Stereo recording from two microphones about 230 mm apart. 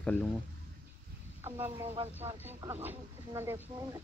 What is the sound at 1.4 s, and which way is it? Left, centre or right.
Speech, centre.